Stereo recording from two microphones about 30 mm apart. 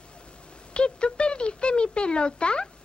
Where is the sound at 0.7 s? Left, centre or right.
Left.